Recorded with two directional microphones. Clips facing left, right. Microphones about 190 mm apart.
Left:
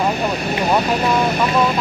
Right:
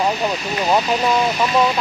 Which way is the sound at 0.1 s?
55° left (ahead or behind).